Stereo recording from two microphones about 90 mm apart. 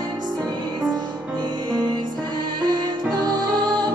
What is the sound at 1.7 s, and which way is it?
Music, 50° right (ahead or behind).